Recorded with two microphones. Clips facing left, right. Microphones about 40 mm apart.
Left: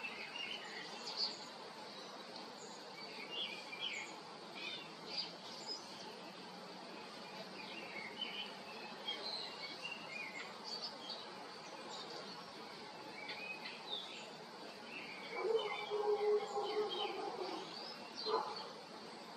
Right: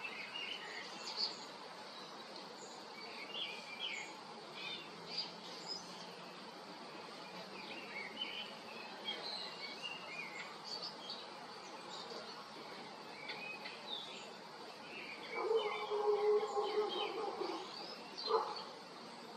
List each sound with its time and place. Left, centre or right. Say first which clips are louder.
15.3 s dog: right 1 dB; centre
16.4 s a sound: right 3 dB; right
16.8 s bird: right 1 dB; centre
18.2 s bow-wow: right 3 dB; centre